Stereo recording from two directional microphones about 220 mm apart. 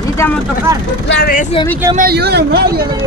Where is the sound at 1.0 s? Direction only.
40° left (ahead or behind).